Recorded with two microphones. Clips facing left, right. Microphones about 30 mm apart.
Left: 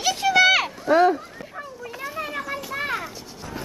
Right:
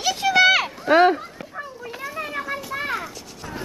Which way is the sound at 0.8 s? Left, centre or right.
Right.